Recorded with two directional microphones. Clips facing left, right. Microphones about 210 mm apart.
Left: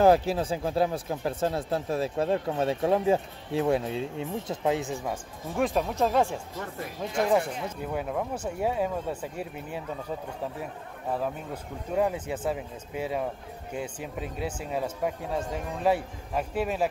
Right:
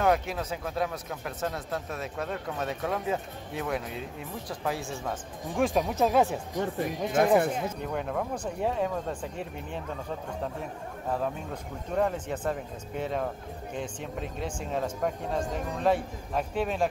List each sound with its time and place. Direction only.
0.0 s speech: 30° left (ahead or behind)
5.6 s speech: centre (ahead or behind)
7.1 s speech: 55° right (ahead or behind)
7.8 s speech: 5° left (ahead or behind)